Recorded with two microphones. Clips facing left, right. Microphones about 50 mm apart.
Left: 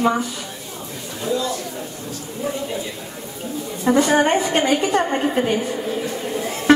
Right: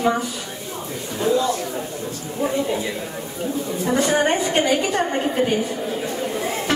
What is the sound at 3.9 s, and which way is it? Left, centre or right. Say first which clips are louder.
Speech: left 4 dB; left.